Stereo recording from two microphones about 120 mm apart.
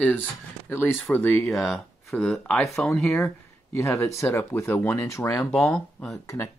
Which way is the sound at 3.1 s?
15° left (ahead or behind).